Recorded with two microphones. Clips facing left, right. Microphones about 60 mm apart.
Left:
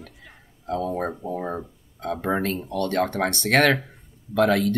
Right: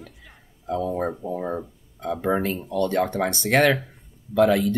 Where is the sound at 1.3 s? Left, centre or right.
Centre.